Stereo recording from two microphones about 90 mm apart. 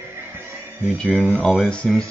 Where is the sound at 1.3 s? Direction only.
5° left (ahead or behind).